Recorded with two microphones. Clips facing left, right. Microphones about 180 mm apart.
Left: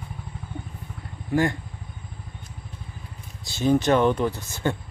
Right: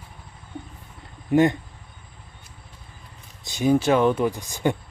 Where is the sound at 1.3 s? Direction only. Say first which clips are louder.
Right 5 dB; 20° right (ahead or behind).